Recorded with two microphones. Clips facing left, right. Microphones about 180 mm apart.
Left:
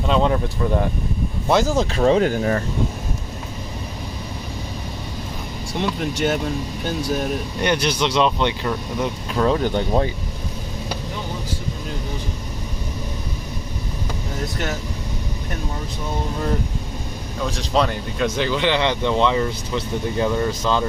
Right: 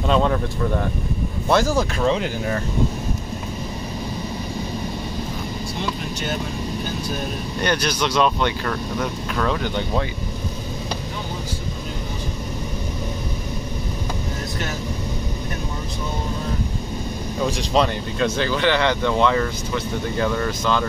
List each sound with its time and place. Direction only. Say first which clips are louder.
0.1 s speech: left 1 dB; 15° left (ahead or behind)
1.5 s speech: left 1 dB; 20° left (ahead or behind)
2.0 s speech: left 8 dB; 45° left (ahead or behind)
5.8 s speech: left 8 dB; 90° left
7.6 s speech: left 1 dB; 25° left (ahead or behind)
9.6 s speech: left 4 dB; 40° left (ahead or behind)
18.2 s speech: even; 15° left (ahead or behind)